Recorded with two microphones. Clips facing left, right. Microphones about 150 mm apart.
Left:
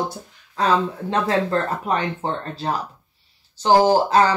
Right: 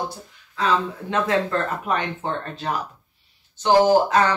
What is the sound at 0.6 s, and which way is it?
Speech, 35° left (ahead or behind).